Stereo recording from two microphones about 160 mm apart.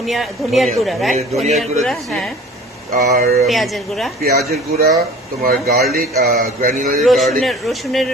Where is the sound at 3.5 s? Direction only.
Centre (ahead or behind).